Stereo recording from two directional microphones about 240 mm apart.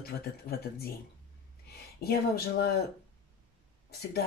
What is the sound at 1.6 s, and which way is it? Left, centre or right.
Speech, left.